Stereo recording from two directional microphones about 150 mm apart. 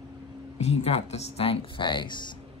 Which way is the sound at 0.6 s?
45° left (ahead or behind).